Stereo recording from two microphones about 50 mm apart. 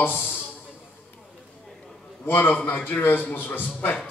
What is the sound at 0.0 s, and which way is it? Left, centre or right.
Speech, left.